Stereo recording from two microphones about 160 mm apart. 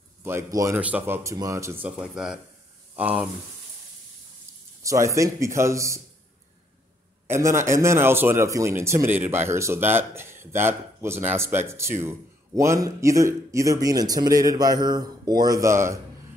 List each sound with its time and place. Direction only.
0.2 s a man's voice: 15° right (ahead or behind)
0.7 s a man's voice: 10° right (ahead or behind)
4.8 s a man's voice: 20° right (ahead or behind)
7.2 s a man's voice: 15° right (ahead or behind)